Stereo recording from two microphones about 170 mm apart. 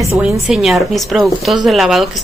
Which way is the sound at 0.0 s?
15° right (ahead or behind).